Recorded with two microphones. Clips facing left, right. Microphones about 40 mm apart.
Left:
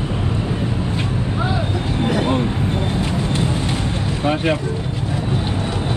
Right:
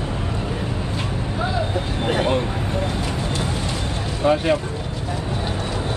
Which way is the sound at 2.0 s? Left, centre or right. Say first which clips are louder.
Left 1 dB; right.